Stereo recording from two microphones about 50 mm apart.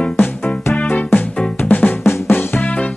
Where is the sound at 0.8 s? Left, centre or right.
Left.